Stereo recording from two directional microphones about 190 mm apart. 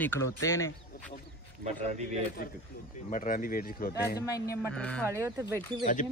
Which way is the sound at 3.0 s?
45° left (ahead or behind).